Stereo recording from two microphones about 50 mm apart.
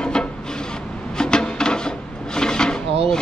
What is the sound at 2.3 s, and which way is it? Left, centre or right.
Drawer open or close, centre.